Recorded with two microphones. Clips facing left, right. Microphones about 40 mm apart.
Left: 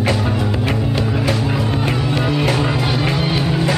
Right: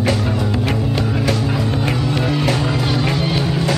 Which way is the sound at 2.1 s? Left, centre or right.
Centre.